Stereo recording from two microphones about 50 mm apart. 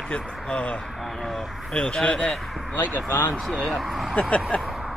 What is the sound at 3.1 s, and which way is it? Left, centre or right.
Speech, left.